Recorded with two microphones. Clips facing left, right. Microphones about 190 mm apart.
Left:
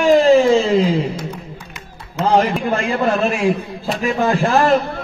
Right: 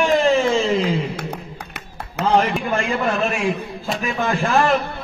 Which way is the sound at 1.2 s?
60° right (ahead or behind).